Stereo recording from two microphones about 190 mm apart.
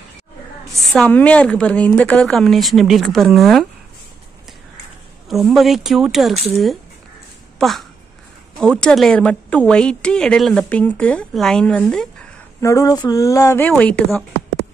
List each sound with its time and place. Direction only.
0.7 s speech: 5° left (ahead or behind)
5.3 s speech: centre (ahead or behind)
12.5 s speech: 15° left (ahead or behind)